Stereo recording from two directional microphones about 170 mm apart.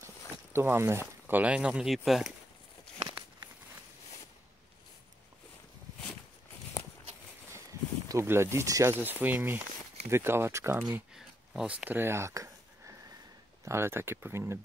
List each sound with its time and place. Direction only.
0.0 s speech: 15° right (ahead or behind)
8.1 s speech: 15° right (ahead or behind)
10.8 s speech: 5° right (ahead or behind)